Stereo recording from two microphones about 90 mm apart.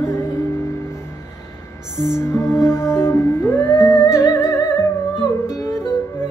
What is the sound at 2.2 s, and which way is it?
Music, 30° left (ahead or behind).